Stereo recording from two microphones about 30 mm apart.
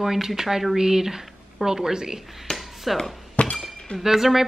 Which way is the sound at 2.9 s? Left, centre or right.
Centre.